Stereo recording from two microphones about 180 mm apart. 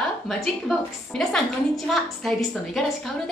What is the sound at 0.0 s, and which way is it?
A woman's voice, centre (ahead or behind).